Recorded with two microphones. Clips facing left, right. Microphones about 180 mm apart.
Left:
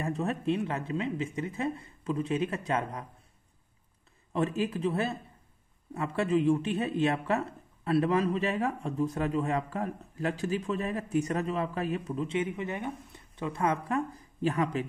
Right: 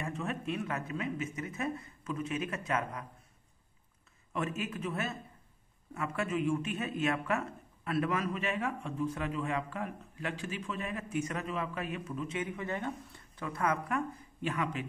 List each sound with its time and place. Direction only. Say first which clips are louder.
0.0 s speech: left 6 dB; 35° left (ahead or behind)
4.3 s speech: left 6 dB; 35° left (ahead or behind)